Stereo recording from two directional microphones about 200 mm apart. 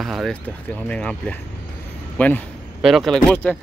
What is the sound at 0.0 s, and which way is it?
Speech, centre (ahead or behind).